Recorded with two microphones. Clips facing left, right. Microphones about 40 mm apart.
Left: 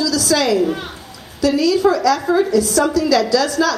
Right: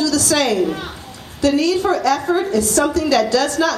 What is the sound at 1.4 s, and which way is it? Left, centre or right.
A woman's voice, right.